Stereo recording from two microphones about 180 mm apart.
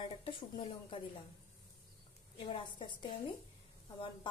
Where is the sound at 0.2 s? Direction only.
30° left (ahead or behind).